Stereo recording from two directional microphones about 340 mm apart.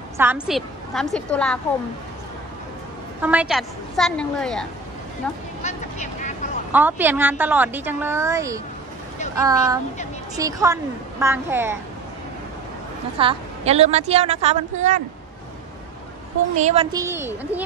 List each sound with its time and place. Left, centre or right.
0.2 s a woman's voice: centre
3.2 s a woman's voice: centre
5.6 s vehicle: centre
6.7 s a woman's voice: centre
13.2 s a woman's voice: centre
16.5 s a woman's voice: centre